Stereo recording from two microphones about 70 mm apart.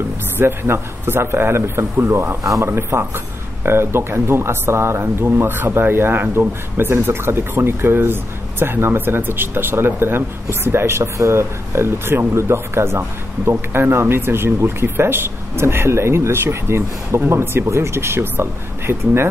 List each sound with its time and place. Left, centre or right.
0.4 s speech: right